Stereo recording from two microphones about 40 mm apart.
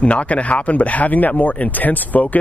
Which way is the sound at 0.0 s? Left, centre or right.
Left.